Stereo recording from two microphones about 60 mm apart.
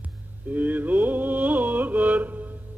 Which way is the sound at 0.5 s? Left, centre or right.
Right.